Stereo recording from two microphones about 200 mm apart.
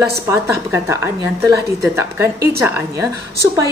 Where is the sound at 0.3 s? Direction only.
15° right (ahead or behind).